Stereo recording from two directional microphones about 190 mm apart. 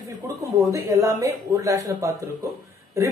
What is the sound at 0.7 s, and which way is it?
A woman's voice, 15° right (ahead or behind).